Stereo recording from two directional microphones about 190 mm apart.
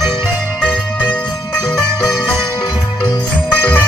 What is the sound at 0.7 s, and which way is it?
Music, centre (ahead or behind).